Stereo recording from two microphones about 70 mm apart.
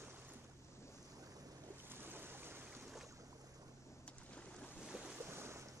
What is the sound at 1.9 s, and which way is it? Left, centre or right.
Boat, right.